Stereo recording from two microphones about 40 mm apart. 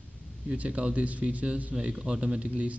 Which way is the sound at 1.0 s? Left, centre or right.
Right.